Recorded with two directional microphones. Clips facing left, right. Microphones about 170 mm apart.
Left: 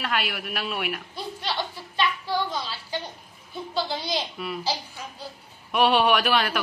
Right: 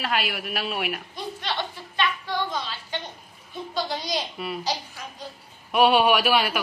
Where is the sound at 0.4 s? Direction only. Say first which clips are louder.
Right 1 dB; centre (ahead or behind).